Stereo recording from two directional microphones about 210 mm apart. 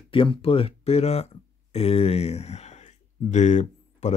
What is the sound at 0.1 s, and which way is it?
Speech, 25° left (ahead or behind).